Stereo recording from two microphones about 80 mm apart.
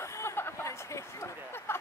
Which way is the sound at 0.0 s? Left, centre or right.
Left.